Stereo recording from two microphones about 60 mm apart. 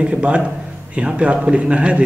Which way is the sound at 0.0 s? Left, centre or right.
Centre.